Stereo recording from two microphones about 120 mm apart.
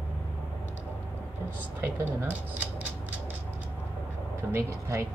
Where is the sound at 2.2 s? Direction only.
15° right (ahead or behind).